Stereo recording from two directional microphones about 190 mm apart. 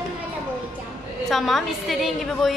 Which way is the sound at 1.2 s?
Centre (ahead or behind).